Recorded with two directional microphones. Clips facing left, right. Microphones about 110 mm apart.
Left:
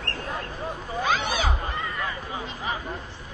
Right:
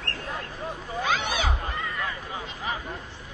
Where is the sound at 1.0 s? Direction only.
35° left (ahead or behind).